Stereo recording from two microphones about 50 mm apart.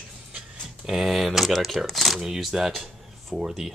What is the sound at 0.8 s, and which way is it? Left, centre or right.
Speech, centre.